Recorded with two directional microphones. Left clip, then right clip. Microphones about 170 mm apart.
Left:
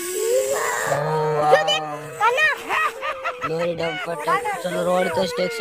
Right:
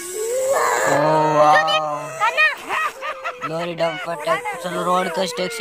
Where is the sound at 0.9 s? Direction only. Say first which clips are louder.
Right 6 dB; 55° right (ahead or behind).